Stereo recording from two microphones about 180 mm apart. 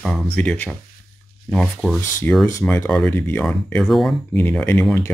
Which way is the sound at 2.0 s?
15° left (ahead or behind).